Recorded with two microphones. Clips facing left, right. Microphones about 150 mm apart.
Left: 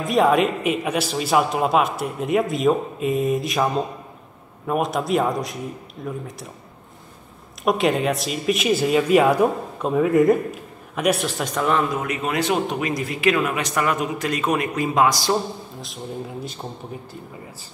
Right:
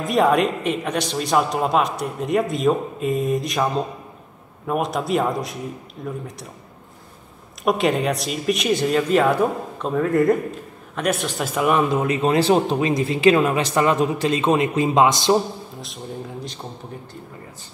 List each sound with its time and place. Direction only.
0.0 s speech: centre (ahead or behind)
7.6 s speech: centre (ahead or behind)
11.9 s speech: 30° right (ahead or behind)